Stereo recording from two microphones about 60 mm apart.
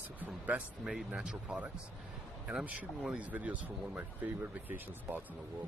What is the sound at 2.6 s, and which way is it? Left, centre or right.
Speech, right.